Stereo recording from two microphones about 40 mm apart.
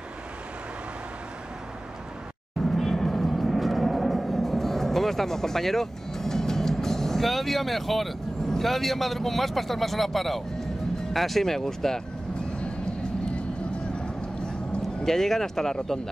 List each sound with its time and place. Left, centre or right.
2.6 s vehicle: centre
11.1 s speech: centre
13.9 s vehicle: left
15.0 s speech: centre